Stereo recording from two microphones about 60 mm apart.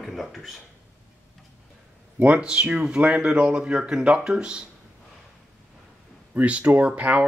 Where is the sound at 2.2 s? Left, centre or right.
Centre.